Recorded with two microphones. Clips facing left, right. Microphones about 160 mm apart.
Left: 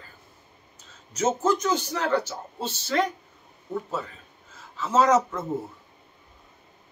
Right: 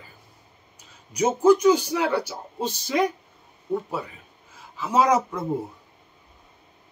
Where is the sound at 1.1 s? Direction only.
10° right (ahead or behind).